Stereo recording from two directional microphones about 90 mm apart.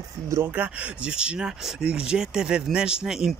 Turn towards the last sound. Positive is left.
turn(degrees=-5)  # may be behind; listen again after turning